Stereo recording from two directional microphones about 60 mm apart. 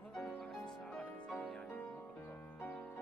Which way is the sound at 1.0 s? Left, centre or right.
Left.